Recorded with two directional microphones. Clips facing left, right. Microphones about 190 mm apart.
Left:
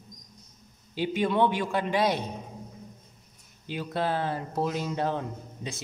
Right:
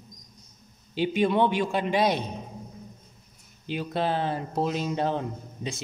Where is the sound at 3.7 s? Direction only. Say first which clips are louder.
Right 2 dB; 20° right (ahead or behind).